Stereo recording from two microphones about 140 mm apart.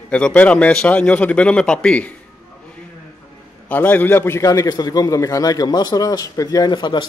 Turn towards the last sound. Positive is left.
turn(degrees=30)  # may be behind; listen again after turning